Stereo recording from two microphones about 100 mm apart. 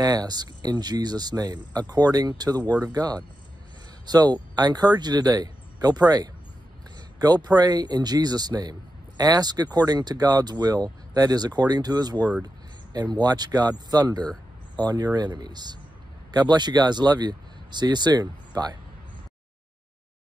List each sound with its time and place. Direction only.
0.0 s speech: 40° right (ahead or behind)